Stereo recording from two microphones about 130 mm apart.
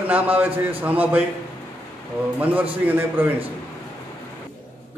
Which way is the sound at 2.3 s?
10° right (ahead or behind).